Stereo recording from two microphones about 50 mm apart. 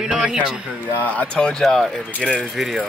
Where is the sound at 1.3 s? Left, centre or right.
Centre.